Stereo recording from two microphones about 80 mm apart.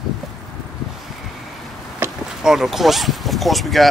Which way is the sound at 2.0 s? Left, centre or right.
Right.